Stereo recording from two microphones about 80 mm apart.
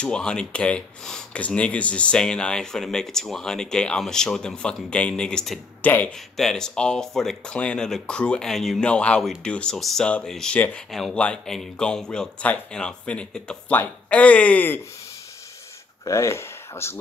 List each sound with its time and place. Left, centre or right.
0.0 s speech: centre
5.8 s speech: left
6.3 s speech: centre
8.8 s speech: centre
10.9 s speech: centre; by 14.8 s left
16.1 s speech: left